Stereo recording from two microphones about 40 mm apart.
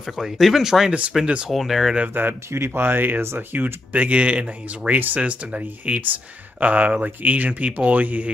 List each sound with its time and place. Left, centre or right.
0.0 s speech: centre
1.2 s speech: right
1.5 s speech: centre
2.5 s speech: right
3.3 s speech: right